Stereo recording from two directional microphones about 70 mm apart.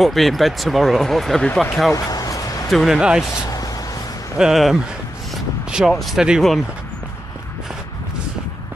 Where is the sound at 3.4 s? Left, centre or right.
Left.